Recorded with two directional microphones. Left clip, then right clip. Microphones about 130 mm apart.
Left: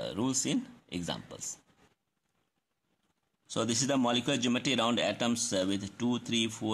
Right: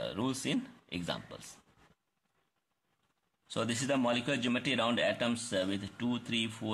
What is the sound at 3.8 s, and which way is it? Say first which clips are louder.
Speech: left 1 dB; 30° left (ahead or behind).